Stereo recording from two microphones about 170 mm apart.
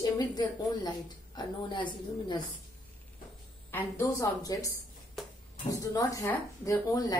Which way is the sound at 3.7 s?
15° left (ahead or behind).